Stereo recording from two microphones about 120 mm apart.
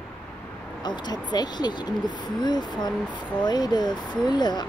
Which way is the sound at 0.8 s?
35° left (ahead or behind).